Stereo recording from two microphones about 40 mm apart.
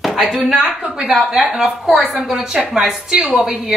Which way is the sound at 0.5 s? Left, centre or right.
Right.